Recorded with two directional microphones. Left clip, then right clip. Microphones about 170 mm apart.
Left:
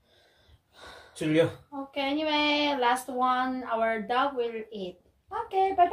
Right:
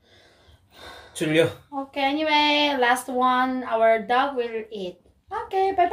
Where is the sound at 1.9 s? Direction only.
10° right (ahead or behind).